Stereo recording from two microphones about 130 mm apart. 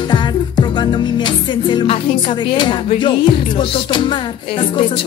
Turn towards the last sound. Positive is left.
turn(degrees=40)  # may be behind; listen again after turning